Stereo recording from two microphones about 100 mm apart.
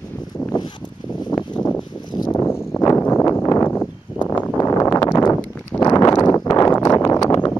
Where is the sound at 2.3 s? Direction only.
25° left (ahead or behind).